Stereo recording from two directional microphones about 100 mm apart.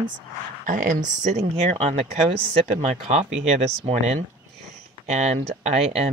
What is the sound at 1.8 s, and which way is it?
Speech, 90° right.